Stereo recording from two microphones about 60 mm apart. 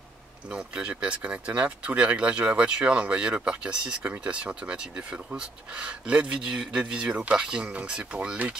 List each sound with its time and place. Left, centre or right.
0.5 s speech: centre